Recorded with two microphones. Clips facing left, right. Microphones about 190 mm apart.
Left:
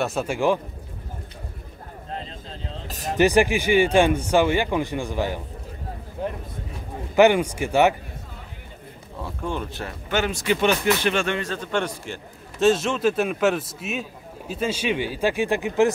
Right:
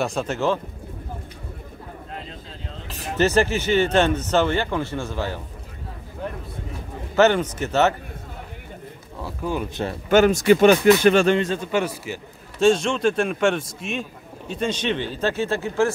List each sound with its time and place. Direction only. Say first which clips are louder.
0.0 s speech: left 1 dB; 5° left (ahead or behind)
2.9 s a sound: left 2 dB; 40° left (ahead or behind)
3.2 s speech: left 1 dB; 15° left (ahead or behind)
7.2 s speech: left 1 dB; 10° left (ahead or behind)
9.2 s a man's voice: right 2 dB; 5° right (ahead or behind)
10.0 s speech: right 8 dB; 45° right (ahead or behind)
11.3 s a man's voice: right 6 dB; 20° right (ahead or behind)
11.6 s a man's voice: right 2 dB; 5° right (ahead or behind); by 15.9 s 15° left (ahead or behind)